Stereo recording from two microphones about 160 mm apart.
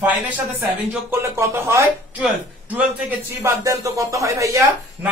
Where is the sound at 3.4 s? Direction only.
20° right (ahead or behind).